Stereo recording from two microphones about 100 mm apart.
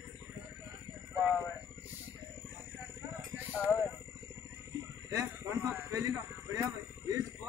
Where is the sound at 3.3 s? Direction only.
15° right (ahead or behind).